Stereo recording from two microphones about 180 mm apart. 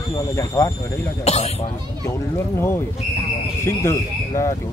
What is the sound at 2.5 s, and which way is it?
Speech, 15° left (ahead or behind).